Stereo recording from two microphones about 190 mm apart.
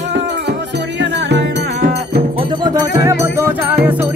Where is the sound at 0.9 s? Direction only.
65° right (ahead or behind).